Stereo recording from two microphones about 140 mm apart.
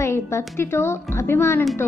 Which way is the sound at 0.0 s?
20° left (ahead or behind).